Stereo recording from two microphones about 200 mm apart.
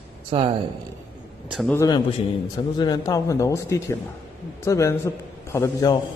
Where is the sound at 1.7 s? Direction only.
20° left (ahead or behind).